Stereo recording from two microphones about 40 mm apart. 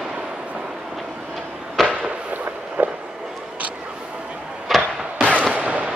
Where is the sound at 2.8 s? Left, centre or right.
Right.